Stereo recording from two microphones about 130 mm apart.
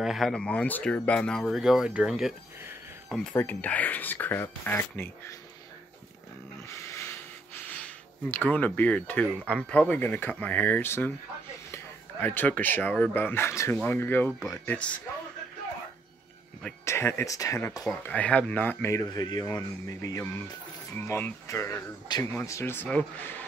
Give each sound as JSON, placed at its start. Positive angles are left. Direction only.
{"t": 0.0, "sound": "speech", "side_deg": 0}
{"t": 3.3, "sound": "speech", "side_deg": 15}
{"t": 6.7, "sound": "a sound", "side_deg": 25}
{"t": 8.5, "sound": "speech", "side_deg": 10}
{"t": 16.8, "sound": "speech", "side_deg": 20}
{"t": 22.0, "sound": "speech", "side_deg": 35}
{"t": 22.3, "sound": "speech", "side_deg": 20}